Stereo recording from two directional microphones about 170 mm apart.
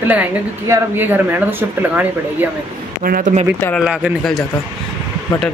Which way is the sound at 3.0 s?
55° right (ahead or behind).